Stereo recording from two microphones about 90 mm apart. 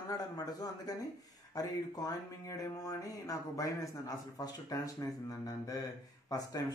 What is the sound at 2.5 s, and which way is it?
Speech, 40° left (ahead or behind).